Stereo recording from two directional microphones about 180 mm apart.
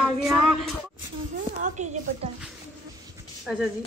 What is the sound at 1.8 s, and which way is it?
Speech, 40° right (ahead or behind).